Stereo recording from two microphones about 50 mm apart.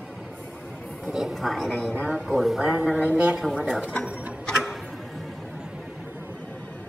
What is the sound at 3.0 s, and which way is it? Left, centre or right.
Speech, right.